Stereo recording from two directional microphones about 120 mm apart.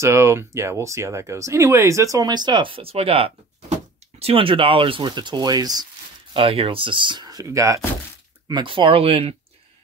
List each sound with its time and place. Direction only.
0.0 s speech: 25° right (ahead or behind)
6.3 s speech: 50° right (ahead or behind); by 7.8 s 25° right (ahead or behind)
8.5 s speech: 40° right (ahead or behind)